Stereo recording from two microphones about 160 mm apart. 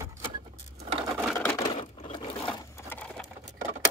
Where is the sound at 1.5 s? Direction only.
25° left (ahead or behind).